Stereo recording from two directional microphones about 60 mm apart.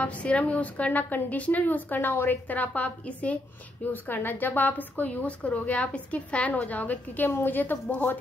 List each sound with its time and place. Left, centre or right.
0.0 s a woman's voice: left
7.2 s a woman's voice: left